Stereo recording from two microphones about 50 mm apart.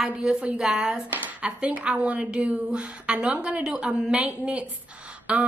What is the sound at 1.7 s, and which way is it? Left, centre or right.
A woman's voice, right.